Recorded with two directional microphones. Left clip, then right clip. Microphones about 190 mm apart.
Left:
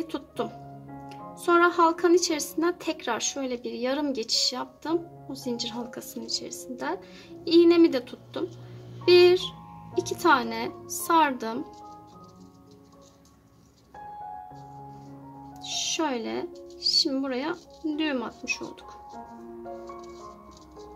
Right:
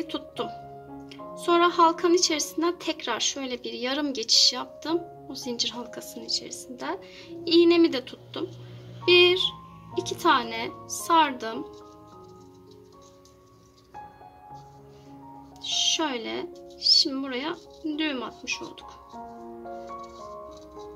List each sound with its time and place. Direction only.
0.0 s music: 15° left (ahead or behind)
1.0 s speech: 15° left (ahead or behind)
15.7 s speech: 15° left (ahead or behind)